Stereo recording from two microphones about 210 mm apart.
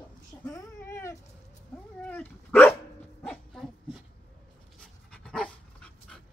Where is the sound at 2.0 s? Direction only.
10° left (ahead or behind).